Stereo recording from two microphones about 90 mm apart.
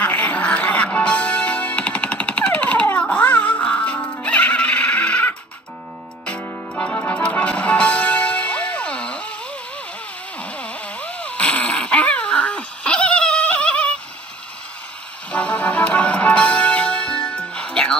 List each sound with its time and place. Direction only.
0.0 s music: 15° left (ahead or behind)
10.4 s a sound: 15° left (ahead or behind)
15.3 s music: 15° left (ahead or behind)